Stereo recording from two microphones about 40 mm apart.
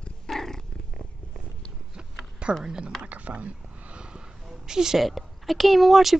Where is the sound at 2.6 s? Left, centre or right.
Centre.